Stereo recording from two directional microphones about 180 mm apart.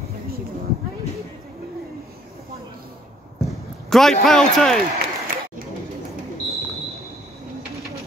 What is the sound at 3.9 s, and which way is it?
Speech, centre (ahead or behind).